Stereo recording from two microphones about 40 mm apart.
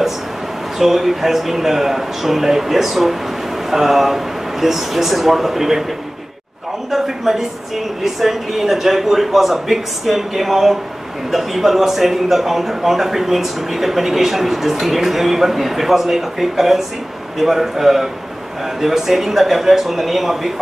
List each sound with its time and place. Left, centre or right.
0.7 s a man's voice: centre
6.9 s a man's voice: centre